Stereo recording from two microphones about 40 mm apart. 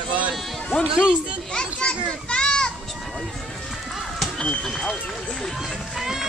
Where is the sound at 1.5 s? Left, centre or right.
Left.